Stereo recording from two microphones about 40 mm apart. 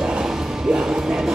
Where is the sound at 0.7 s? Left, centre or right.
Right.